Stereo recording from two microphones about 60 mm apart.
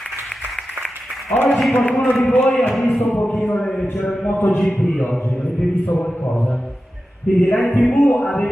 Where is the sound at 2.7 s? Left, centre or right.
Centre.